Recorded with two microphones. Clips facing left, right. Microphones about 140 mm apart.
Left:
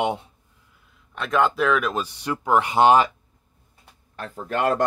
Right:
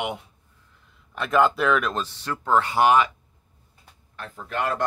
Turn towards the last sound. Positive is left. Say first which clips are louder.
# left 5 dB
turn(degrees=45)  # may be behind; listen again after turning